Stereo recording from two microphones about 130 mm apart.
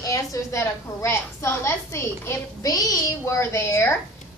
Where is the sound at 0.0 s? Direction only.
25° left (ahead or behind).